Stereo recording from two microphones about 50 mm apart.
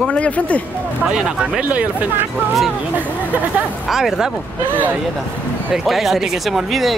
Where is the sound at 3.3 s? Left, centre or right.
Right.